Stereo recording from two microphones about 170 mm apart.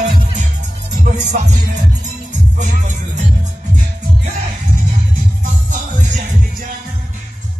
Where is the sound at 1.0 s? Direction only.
45° right (ahead or behind).